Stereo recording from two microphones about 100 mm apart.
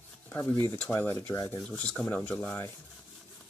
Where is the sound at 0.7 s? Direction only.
20° left (ahead or behind).